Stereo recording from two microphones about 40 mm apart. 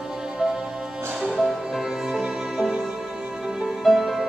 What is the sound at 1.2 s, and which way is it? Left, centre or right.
Music, centre.